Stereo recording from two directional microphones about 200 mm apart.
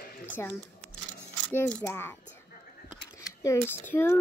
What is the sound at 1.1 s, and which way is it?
A child's voice, 10° left (ahead or behind).